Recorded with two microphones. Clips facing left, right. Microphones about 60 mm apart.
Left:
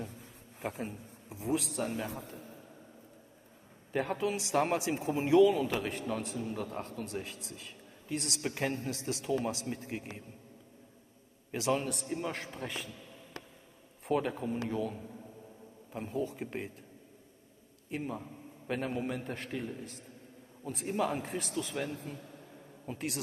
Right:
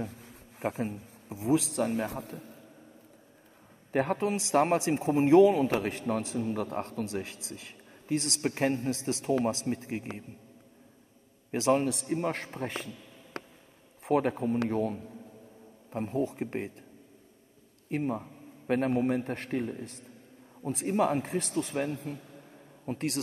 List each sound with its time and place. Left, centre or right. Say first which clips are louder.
0.6 s a man's voice: right 6 dB; right
1.7 s a man's voice: right 6 dB; right
3.9 s a man's voice: right 4 dB; right
11.5 s a man's voice: right 6 dB; right
11.9 s a man's voice: right 5 dB; right
17.8 s a man's voice: right 6 dB; right